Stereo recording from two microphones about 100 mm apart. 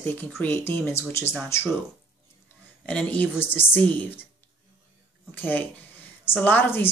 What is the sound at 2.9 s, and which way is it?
Speech, 15° left (ahead or behind).